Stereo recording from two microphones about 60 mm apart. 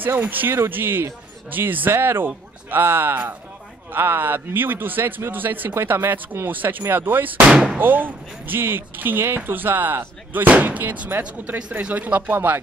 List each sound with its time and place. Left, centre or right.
0.0 s a man's voice: right
7.4 s speech: centre
7.8 s a man's voice: right